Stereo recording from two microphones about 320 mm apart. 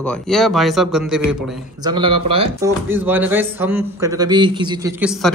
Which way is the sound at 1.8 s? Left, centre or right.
Centre.